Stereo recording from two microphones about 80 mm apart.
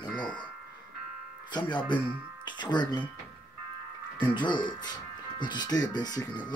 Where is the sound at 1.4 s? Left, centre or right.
Left.